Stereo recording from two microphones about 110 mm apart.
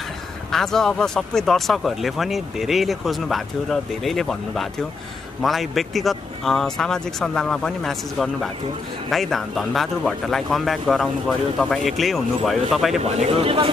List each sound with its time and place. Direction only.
0.5 s speech: 5° left (ahead or behind)
13.0 s speech: 75° right (ahead or behind); by 13.7 s 60° right (ahead or behind)